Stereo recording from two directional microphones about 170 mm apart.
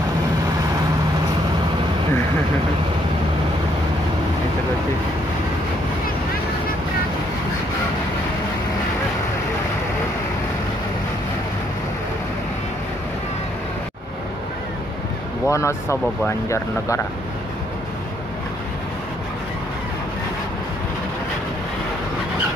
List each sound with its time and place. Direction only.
15.4 s speech: 15° left (ahead or behind)